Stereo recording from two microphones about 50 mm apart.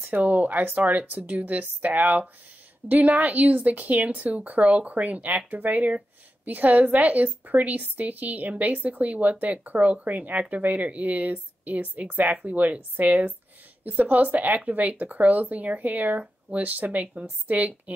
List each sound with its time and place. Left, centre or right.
0.1 s a woman's voice: right